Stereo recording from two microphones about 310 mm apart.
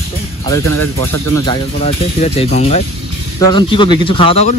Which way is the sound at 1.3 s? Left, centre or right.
Centre.